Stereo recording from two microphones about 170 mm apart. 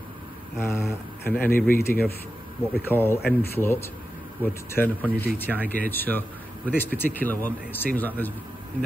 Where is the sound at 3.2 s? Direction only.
65° left (ahead or behind).